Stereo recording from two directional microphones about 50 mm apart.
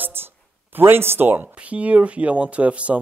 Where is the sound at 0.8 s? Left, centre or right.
Right.